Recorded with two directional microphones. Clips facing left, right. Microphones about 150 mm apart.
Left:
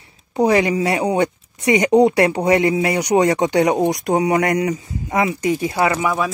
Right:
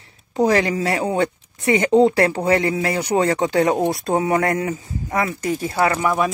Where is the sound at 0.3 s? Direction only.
15° left (ahead or behind).